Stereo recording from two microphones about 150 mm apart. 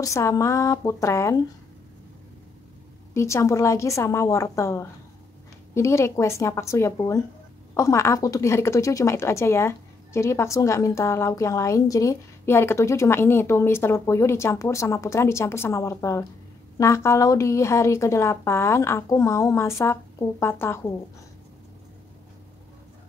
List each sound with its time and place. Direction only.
0.0 s a woman's voice: 20° left (ahead or behind)
3.2 s a woman's voice: 20° left (ahead or behind)